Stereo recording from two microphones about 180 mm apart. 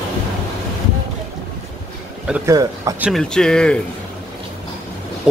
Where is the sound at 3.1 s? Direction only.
5° left (ahead or behind).